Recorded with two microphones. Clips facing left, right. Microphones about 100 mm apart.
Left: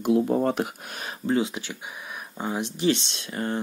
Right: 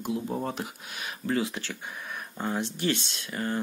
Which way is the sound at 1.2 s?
20° left (ahead or behind).